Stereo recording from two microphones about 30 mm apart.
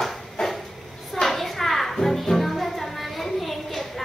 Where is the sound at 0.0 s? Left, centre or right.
Centre.